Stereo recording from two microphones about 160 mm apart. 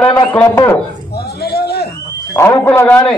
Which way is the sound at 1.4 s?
80° left.